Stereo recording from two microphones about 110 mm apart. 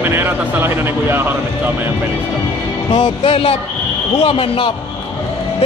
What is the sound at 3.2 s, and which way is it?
Speech, 55° left (ahead or behind).